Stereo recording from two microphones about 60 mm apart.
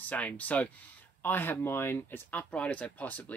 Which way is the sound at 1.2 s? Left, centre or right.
Left.